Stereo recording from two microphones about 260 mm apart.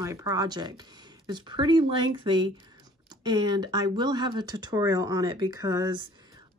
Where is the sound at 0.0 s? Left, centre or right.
Centre.